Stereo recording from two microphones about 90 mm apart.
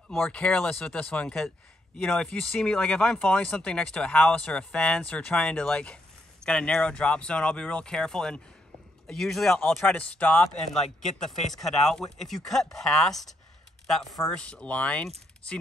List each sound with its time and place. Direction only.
0.3 s speech: 10° left (ahead or behind)
9.8 s speech: 15° left (ahead or behind)
10.7 s speech: 5° left (ahead or behind)